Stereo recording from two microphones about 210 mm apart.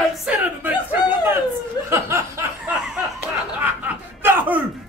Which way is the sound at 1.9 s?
10° right (ahead or behind).